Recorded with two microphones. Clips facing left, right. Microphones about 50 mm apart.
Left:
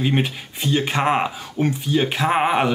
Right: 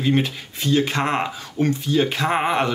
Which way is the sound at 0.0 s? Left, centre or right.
Centre.